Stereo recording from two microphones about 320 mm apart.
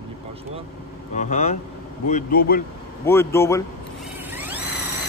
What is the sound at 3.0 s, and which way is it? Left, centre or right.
Speech, centre.